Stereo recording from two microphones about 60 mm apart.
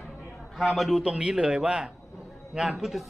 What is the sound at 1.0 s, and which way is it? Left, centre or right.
A man's voice, centre.